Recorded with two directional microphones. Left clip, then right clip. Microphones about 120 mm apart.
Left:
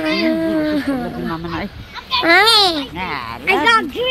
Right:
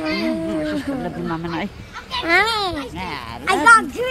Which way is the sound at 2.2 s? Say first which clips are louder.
Left 6 dB; 55° left (ahead or behind).